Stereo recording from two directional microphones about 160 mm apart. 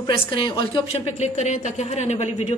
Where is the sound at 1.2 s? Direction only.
45° left (ahead or behind).